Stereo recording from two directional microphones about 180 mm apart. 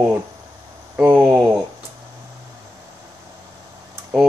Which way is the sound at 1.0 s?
5° right (ahead or behind).